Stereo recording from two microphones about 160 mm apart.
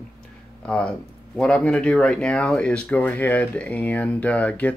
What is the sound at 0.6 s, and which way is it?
Speech, 5° left (ahead or behind).